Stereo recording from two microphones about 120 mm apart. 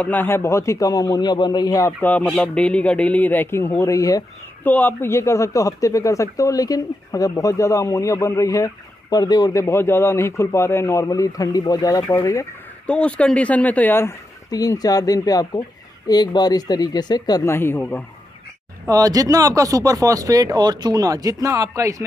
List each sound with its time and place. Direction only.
0.0 s a man's voice: 15° left (ahead or behind)
4.6 s a man's voice: 15° left (ahead or behind)
12.8 s speech: 10° left (ahead or behind)
14.5 s speech: 30° left (ahead or behind)
17.5 s speech: 20° left (ahead or behind)
18.9 s speech: 30° right (ahead or behind)